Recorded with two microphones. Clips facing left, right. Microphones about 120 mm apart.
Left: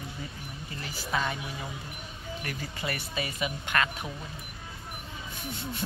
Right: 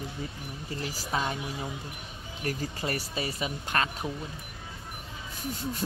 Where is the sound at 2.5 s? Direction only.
40° right (ahead or behind).